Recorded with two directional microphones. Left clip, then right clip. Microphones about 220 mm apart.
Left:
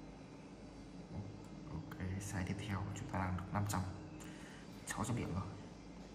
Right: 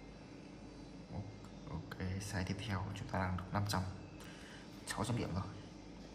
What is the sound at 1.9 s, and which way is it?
Speech, 10° right (ahead or behind).